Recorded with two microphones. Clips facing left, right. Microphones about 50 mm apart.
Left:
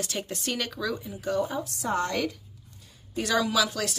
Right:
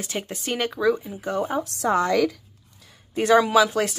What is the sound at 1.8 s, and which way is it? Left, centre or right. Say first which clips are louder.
Speech: right 7 dB; right.